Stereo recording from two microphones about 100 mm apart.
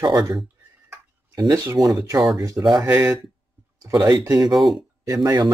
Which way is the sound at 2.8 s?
30° right (ahead or behind).